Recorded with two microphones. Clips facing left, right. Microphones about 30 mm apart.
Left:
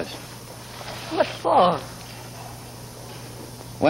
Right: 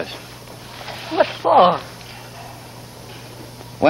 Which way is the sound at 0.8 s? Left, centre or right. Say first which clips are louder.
Right 5 dB; right.